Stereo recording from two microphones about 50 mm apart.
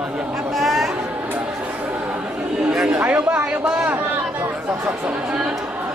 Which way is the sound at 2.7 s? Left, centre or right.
Centre.